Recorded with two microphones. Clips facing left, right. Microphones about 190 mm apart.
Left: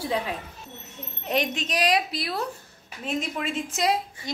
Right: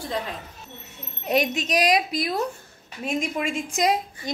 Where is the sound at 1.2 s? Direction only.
10° right (ahead or behind).